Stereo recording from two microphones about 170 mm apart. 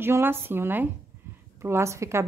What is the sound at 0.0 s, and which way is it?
Speech, 15° right (ahead or behind).